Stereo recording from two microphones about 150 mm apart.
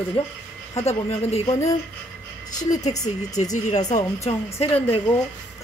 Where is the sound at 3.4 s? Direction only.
50° left (ahead or behind).